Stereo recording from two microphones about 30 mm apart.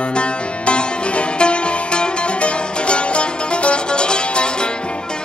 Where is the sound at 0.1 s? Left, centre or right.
Left.